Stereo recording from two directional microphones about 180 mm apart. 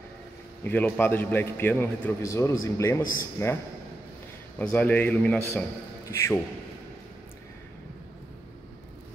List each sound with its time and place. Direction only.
0.7 s a man's voice: 10° left (ahead or behind)
4.6 s a man's voice: 10° left (ahead or behind)